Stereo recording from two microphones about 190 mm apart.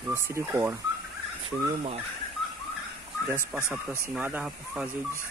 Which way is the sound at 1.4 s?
35° right (ahead or behind).